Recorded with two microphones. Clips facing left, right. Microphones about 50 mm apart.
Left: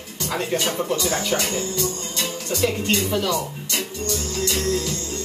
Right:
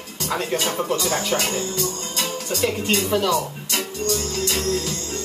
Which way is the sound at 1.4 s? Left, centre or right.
Right.